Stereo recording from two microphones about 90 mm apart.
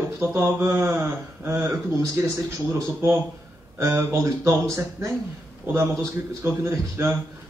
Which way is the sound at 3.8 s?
35° right (ahead or behind).